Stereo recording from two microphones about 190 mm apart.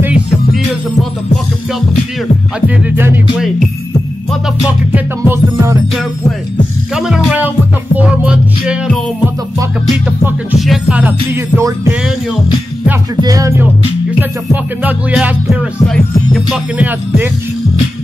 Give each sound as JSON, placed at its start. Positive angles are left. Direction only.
{"t": 0.0, "sound": "music", "side_deg": -5}
{"t": 2.9, "sound": "music", "side_deg": -10}
{"t": 4.3, "sound": "music", "side_deg": -10}
{"t": 7.0, "sound": "music", "side_deg": 0}
{"t": 10.0, "sound": "music", "side_deg": -5}
{"t": 13.2, "sound": "music", "side_deg": -20}